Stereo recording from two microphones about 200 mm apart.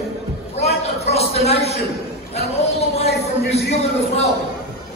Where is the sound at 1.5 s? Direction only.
30° left (ahead or behind).